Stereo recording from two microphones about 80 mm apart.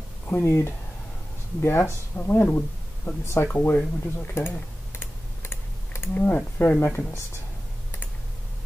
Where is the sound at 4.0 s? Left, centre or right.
Left.